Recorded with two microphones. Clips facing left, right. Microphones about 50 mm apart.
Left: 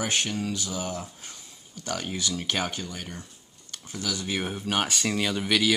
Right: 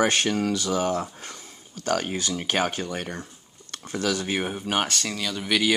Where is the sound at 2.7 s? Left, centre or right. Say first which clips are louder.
Right 6 dB; right.